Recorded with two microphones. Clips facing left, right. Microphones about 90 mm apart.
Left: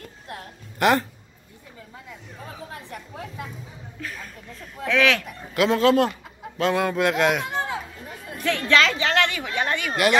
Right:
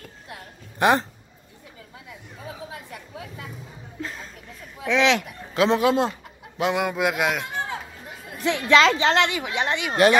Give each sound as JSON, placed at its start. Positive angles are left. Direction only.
{"t": 0.7, "sound": "speech", "side_deg": -20}
{"t": 2.4, "sound": "chatter", "side_deg": -5}
{"t": 4.0, "sound": "music", "side_deg": -25}
{"t": 4.8, "sound": "speech", "side_deg": -20}
{"t": 8.5, "sound": "speech", "side_deg": -20}